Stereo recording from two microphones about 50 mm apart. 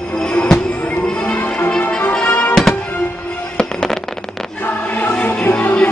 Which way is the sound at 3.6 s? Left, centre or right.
Centre.